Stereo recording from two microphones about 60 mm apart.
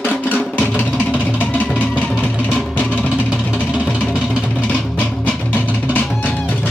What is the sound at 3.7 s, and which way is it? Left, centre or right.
Music, centre.